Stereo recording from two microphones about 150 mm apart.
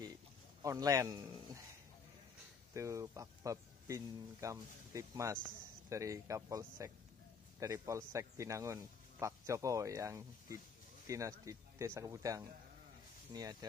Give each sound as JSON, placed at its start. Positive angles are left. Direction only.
{"t": 0.6, "sound": "a man's voice", "side_deg": -25}
{"t": 2.7, "sound": "speech", "side_deg": -20}